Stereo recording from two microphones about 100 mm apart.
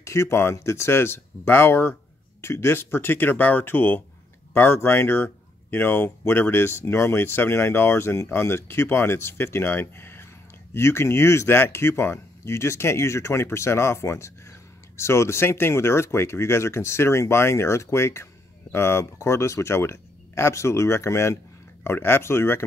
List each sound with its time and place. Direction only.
0.0 s speech: 30° left (ahead or behind)